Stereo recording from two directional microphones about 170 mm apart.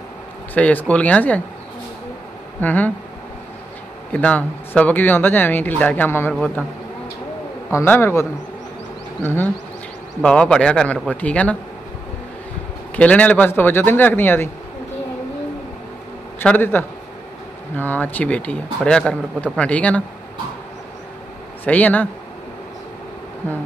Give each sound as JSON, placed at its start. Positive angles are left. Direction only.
{"t": 0.6, "sound": "speech", "side_deg": 10}
{"t": 2.6, "sound": "speech", "side_deg": 10}
{"t": 4.1, "sound": "speech", "side_deg": 10}
{"t": 7.7, "sound": "speech", "side_deg": 15}
{"t": 12.9, "sound": "speech", "side_deg": 10}
{"t": 16.3, "sound": "speech", "side_deg": 10}
{"t": 21.6, "sound": "speech", "side_deg": 10}